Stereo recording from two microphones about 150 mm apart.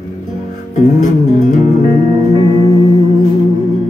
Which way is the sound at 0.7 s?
50° left (ahead or behind).